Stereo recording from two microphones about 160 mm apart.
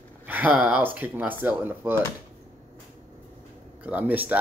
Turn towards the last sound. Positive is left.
turn(degrees=-10)  # may be behind; listen again after turning